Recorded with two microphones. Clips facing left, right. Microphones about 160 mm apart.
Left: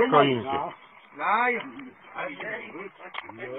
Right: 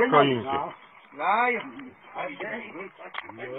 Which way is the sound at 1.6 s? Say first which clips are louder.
Even; centre (ahead or behind).